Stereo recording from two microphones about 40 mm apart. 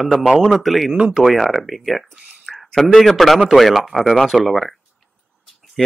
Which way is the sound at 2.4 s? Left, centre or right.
Centre.